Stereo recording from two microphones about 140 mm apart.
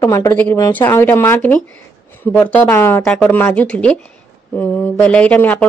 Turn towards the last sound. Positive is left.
turn(degrees=10)  # may be behind; listen again after turning